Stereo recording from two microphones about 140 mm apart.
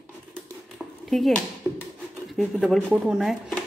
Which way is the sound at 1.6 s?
20° right (ahead or behind).